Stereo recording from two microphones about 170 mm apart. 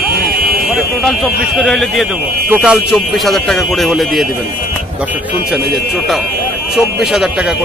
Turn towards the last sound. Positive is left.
turn(degrees=0)  # may be behind; listen again after turning